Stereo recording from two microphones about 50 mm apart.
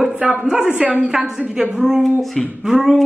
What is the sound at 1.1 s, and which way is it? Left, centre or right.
A man's voice, centre.